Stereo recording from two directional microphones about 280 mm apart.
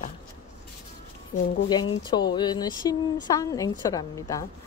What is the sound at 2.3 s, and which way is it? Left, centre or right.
A woman's voice, centre.